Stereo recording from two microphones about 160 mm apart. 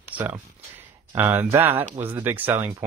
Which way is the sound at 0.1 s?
10° right (ahead or behind).